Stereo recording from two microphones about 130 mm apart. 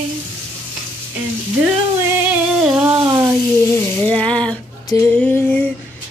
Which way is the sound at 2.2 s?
10° right (ahead or behind).